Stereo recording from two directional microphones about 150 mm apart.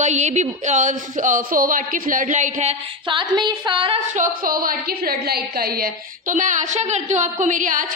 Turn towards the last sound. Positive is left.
turn(degrees=-60)  # may be behind; listen again after turning